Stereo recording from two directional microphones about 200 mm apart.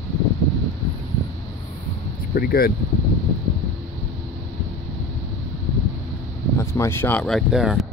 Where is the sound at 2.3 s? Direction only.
50° left (ahead or behind).